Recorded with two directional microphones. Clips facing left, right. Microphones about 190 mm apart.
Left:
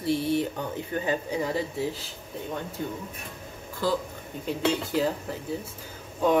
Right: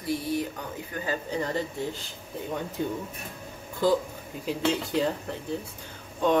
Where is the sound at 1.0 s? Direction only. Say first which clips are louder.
Left 1 dB; 10° left (ahead or behind).